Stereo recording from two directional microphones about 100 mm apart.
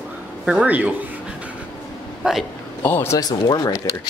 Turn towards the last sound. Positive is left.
turn(degrees=45)  # may be behind; listen again after turning